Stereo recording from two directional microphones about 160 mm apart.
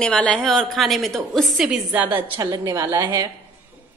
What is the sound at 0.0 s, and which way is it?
A woman's voice, 5° left (ahead or behind).